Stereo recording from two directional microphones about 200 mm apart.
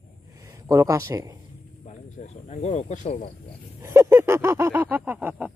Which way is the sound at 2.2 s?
35° left (ahead or behind).